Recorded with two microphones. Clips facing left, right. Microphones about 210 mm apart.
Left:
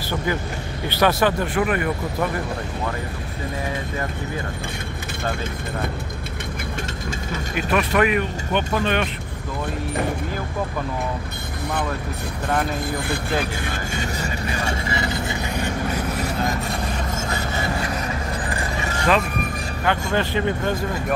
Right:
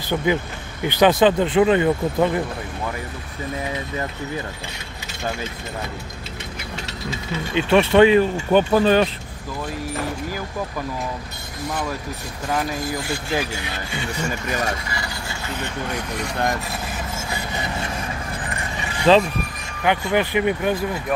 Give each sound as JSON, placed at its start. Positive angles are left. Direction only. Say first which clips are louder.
{"t": 0.3, "sound": "speech", "louder": "right 3 dB", "side_deg": -20}
{"t": 7.5, "sound": "speech", "louder": "right 6 dB", "side_deg": -25}
{"t": 12.7, "sound": "speech", "louder": "left 1 dB", "side_deg": 55}
{"t": 17.3, "sound": "vehicle", "louder": "left 2 dB", "side_deg": -15}
{"t": 19.1, "sound": "speech", "louder": "right 6 dB", "side_deg": -30}
{"t": 19.8, "sound": "speech", "louder": "right 3 dB", "side_deg": -15}